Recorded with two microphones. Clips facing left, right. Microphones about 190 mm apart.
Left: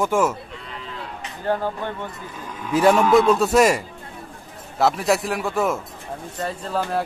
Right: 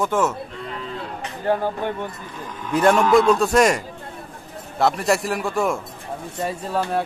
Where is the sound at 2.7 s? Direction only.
5° left (ahead or behind).